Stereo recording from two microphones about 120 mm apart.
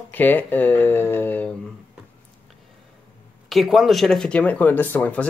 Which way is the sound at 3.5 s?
Centre (ahead or behind).